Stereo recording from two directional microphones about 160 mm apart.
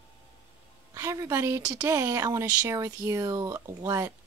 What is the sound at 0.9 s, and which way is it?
Speech, 20° right (ahead or behind).